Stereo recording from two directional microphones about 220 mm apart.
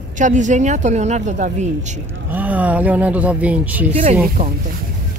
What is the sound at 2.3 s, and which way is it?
Speech, 5° right (ahead or behind).